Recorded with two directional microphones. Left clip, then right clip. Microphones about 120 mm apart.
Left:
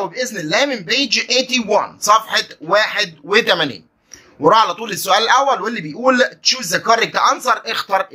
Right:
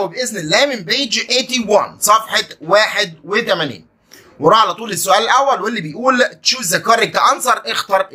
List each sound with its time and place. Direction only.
0.0 s a man's voice: 30° left (ahead or behind)
3.3 s speech: 50° left (ahead or behind)
4.4 s a man's voice: 25° left (ahead or behind)